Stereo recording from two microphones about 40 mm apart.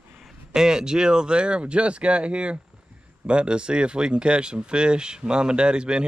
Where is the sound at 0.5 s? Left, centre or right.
Centre.